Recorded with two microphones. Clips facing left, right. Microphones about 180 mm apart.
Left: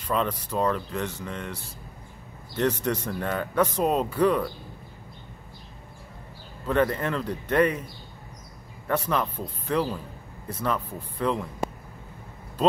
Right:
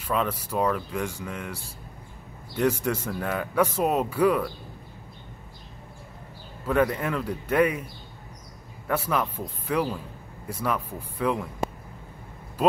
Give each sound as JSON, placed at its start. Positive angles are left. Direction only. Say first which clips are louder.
{"t": 0.0, "sound": "speech", "louder": "even", "side_deg": -5}
{"t": 6.6, "sound": "speech", "louder": "even", "side_deg": -5}
{"t": 8.8, "sound": "speech", "louder": "even", "side_deg": -5}